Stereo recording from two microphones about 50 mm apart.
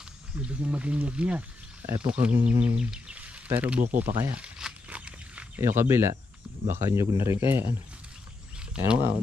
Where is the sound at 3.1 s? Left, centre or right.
Right.